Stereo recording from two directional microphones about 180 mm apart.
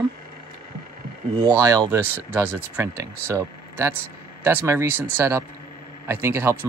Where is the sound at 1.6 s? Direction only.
20° right (ahead or behind).